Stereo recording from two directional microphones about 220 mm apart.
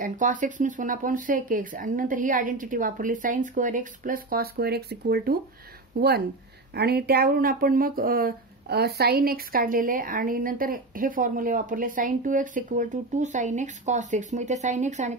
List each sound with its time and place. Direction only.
0.0 s speech: 35° right (ahead or behind)